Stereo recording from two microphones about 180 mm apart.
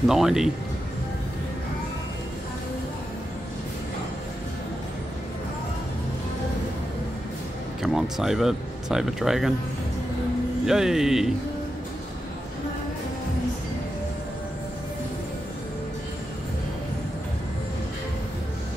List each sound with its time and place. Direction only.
0.0 s speech: centre (ahead or behind)
7.8 s speech: centre (ahead or behind)
10.6 s speech: centre (ahead or behind)